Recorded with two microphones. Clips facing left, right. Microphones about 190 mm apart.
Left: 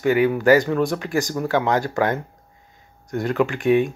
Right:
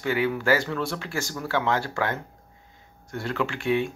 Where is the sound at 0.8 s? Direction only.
15° left (ahead or behind).